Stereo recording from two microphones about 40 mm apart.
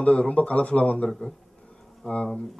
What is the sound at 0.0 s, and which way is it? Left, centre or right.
Speech, left.